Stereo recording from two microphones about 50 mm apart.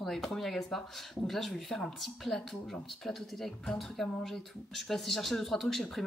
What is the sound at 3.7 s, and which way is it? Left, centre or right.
Speech, centre.